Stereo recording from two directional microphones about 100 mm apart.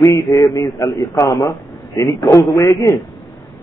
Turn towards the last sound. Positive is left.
turn(degrees=35)  # may be behind; listen again after turning